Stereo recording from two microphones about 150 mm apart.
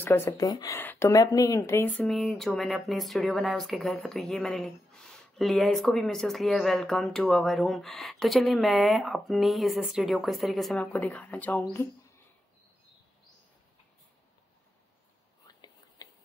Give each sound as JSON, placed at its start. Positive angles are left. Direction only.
{"t": 0.0, "sound": "speech", "side_deg": 15}
{"t": 0.4, "sound": "speech", "side_deg": 25}
{"t": 15.4, "sound": "whispering", "side_deg": 25}